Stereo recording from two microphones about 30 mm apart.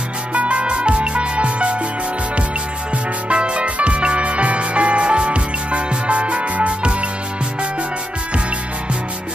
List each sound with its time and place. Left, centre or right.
0.3 s music: right
3.3 s music: right